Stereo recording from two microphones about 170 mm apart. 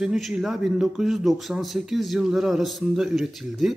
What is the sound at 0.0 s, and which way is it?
Speech, 5° right (ahead or behind).